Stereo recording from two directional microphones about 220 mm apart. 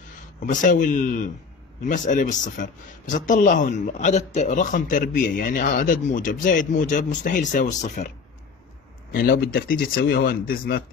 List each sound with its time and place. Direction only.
0.5 s a man's voice: 35° left (ahead or behind)
9.1 s a man's voice: 40° left (ahead or behind)